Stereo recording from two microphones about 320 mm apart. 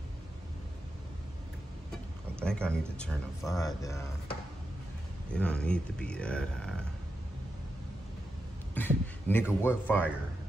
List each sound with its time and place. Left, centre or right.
2.4 s speech: centre
5.3 s speech: centre
8.7 s a sound: centre
9.7 s speech: centre